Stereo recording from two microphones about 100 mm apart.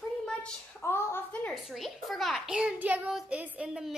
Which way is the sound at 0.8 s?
25° left (ahead or behind).